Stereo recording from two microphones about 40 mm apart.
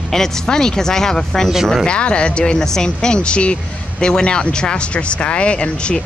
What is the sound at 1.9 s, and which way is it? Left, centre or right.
Speech, left.